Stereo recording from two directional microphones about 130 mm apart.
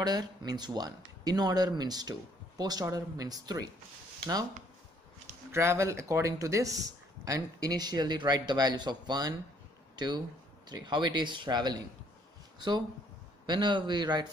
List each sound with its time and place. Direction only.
0.0 s speech: 35° right (ahead or behind)
5.5 s speech: 20° right (ahead or behind)